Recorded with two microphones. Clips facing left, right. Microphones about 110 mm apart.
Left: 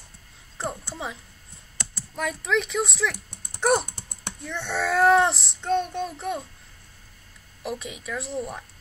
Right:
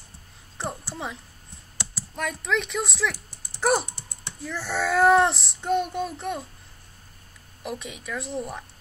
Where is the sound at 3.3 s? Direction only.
60° left (ahead or behind).